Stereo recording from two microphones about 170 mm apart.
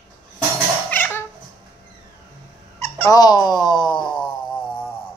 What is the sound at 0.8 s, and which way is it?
Cat, 10° left (ahead or behind).